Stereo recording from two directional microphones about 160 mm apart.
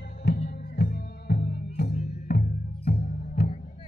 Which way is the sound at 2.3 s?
70° left (ahead or behind).